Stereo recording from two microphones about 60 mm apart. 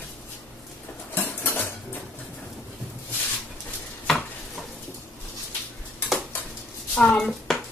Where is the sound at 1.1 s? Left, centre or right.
Left.